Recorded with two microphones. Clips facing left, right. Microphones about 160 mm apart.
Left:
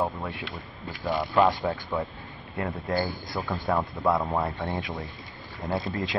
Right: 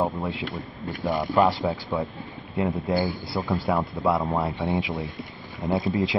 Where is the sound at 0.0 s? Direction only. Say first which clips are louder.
Right 3 dB; 20° right (ahead or behind).